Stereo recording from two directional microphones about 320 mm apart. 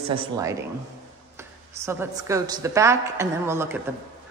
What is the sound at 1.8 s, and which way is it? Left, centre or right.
A woman's voice, centre.